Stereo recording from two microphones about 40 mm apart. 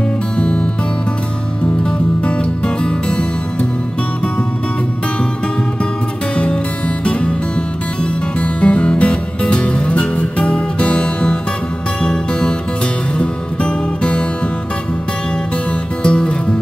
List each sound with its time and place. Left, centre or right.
0.4 s music: left
1.8 s music: left
6.3 s music: left
16.0 s music: left